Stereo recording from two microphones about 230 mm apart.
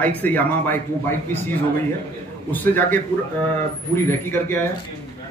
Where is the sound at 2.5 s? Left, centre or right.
Centre.